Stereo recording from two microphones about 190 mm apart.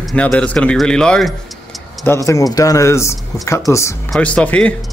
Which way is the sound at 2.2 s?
20° left (ahead or behind).